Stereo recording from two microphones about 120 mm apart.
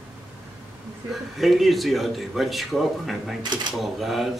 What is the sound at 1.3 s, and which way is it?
Speech, centre (ahead or behind).